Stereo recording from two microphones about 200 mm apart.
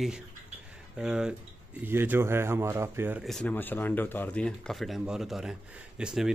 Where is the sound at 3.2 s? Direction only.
5° left (ahead or behind).